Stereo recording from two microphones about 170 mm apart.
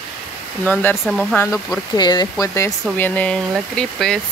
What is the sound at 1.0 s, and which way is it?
Speech, 10° left (ahead or behind).